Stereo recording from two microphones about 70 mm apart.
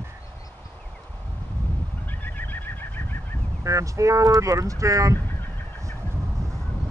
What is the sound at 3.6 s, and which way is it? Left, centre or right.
Speech, right.